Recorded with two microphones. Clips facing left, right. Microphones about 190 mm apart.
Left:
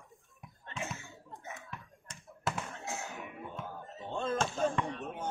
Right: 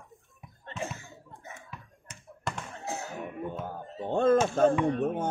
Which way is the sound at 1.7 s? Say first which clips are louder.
Right 1 dB; centre (ahead or behind).